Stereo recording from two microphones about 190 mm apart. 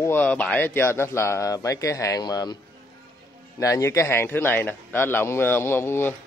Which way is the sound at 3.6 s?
15° left (ahead or behind).